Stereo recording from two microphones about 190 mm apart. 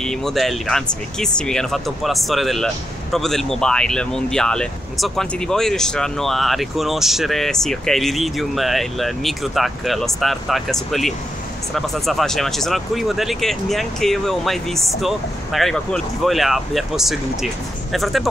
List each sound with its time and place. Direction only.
0.0 s speech: centre (ahead or behind)